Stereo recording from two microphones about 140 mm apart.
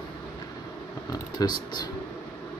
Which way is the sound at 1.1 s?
30° left (ahead or behind).